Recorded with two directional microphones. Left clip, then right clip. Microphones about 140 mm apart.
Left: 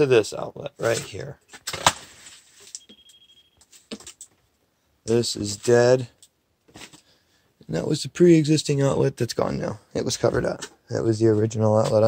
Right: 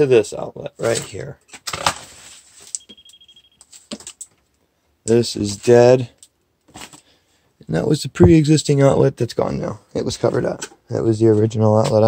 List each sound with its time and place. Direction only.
0.0 s speech: centre (ahead or behind)
1.7 s a sound: 50° left (ahead or behind)
5.0 s speech: 35° right (ahead or behind)
6.7 s a sound: 45° right (ahead or behind)
7.6 s speech: 40° right (ahead or behind)
9.1 s speech: 10° right (ahead or behind)
10.9 s speech: 20° right (ahead or behind)